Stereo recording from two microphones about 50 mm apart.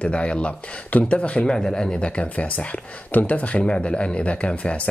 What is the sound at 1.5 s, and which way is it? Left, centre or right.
Speech, centre.